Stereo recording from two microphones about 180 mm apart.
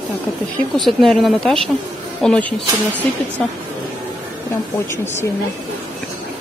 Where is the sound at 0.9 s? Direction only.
Centre (ahead or behind).